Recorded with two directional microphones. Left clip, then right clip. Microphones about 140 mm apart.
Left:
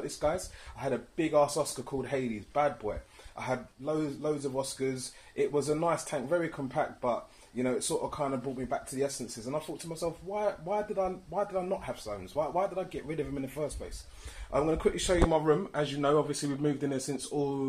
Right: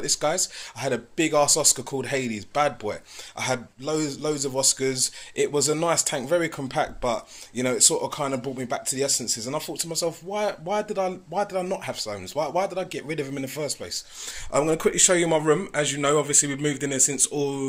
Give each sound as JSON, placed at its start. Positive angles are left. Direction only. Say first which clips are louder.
{"t": 0.2, "sound": "a man's voice", "louder": "right 6 dB", "side_deg": -30}